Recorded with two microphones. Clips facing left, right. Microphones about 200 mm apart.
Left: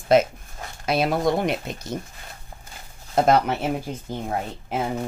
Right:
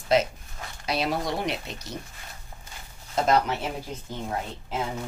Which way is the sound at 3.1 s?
55° left (ahead or behind).